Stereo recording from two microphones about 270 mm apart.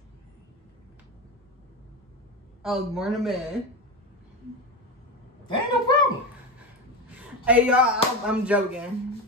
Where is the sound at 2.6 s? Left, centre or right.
Centre.